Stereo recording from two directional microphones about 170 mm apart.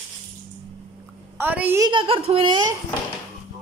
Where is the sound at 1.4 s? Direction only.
10° right (ahead or behind).